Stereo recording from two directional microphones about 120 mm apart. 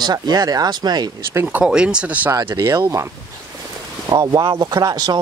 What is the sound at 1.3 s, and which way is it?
Speech, 15° right (ahead or behind).